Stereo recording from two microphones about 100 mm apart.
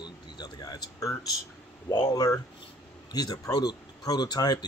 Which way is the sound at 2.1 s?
40° left (ahead or behind).